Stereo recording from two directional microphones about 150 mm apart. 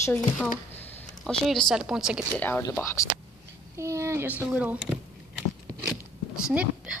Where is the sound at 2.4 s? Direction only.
15° left (ahead or behind).